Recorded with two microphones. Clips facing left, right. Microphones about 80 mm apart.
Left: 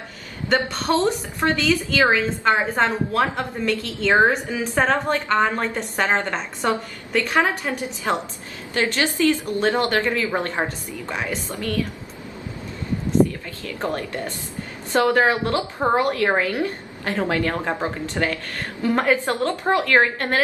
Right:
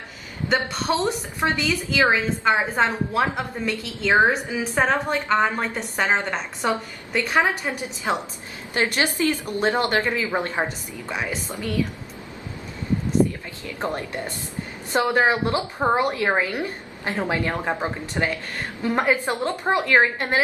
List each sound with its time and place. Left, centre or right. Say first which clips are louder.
0.5 s a woman's voice: left 2 dB; centre
13.7 s a woman's voice: left 1 dB; centre